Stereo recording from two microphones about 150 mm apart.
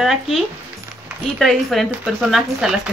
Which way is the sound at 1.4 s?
Centre (ahead or behind).